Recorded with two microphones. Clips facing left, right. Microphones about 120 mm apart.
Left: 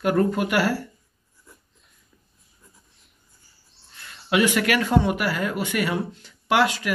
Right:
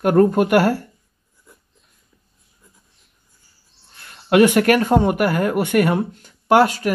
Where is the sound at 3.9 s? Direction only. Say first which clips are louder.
Right 8 dB; 50° right (ahead or behind).